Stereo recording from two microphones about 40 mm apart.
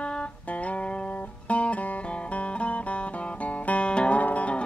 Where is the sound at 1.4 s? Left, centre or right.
Left.